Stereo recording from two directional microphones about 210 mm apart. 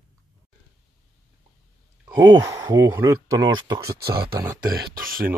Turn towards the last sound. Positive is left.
turn(degrees=-45)  # may be behind; listen again after turning